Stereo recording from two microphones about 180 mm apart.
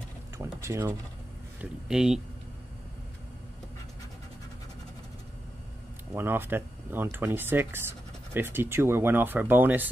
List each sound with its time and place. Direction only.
0.4 s a sound: 15° right (ahead or behind)
1.6 s speech: 5° right (ahead or behind)
6.1 s speech: 10° right (ahead or behind)